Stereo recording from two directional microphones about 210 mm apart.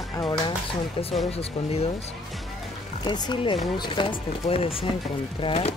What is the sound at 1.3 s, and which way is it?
Speech, 30° left (ahead or behind).